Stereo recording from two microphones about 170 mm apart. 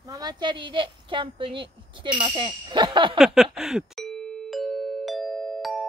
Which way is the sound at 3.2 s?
5° right (ahead or behind).